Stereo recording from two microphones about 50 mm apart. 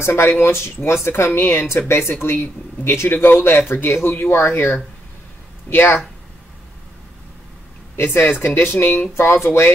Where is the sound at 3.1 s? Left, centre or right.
Left.